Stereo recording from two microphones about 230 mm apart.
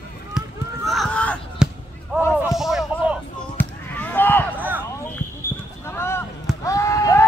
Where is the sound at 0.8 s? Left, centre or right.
Centre.